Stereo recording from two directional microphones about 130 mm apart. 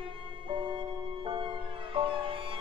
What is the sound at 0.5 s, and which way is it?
Music, 40° right (ahead or behind).